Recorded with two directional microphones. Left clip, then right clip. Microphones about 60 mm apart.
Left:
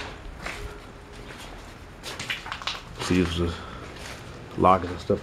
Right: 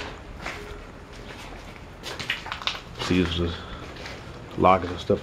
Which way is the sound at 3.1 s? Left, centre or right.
Left.